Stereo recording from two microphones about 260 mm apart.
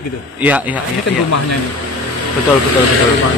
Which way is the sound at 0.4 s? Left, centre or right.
Centre.